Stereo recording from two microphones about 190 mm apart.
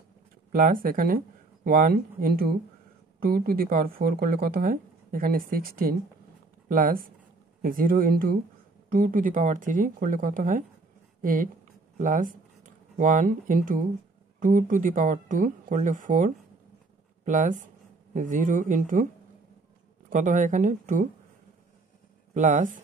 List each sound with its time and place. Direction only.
0.5 s speech: 50° right (ahead or behind)
12.0 s speech: 45° right (ahead or behind)
20.1 s speech: 40° right (ahead or behind)
22.3 s speech: 40° right (ahead or behind)